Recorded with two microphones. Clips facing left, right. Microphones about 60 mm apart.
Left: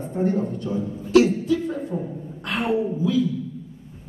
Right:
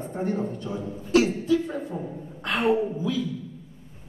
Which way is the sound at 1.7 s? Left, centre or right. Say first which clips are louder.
Left 3 dB; right.